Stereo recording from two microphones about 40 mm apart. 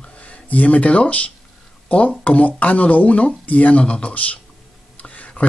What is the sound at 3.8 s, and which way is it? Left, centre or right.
Speech, left.